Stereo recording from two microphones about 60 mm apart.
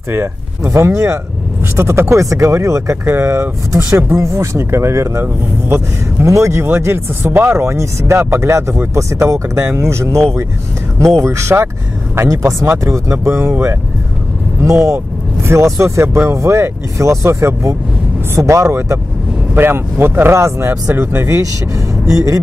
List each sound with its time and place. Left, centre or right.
0.7 s speech: right
6.2 s speech: right
6.6 s speech: right
14.6 s speech: right
19.5 s speech: right
22.0 s speech: right